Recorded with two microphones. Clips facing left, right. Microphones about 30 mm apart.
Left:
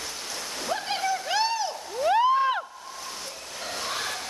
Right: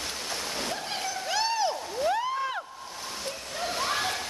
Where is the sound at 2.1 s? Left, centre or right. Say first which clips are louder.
Left 9 dB; left.